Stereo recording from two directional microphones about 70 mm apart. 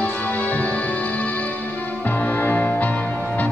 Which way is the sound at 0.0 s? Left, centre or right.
Left.